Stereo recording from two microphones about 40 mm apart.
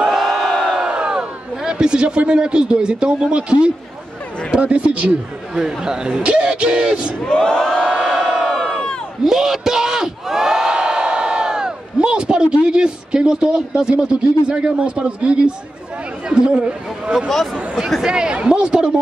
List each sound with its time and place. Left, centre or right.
0.1 s crowd: centre
0.7 s crowd: right
1.6 s a man's voice: centre
5.5 s a man's voice: centre
7.2 s crowd: centre
8.3 s crowd: centre
9.2 s a sound: centre
13.9 s a man's voice: right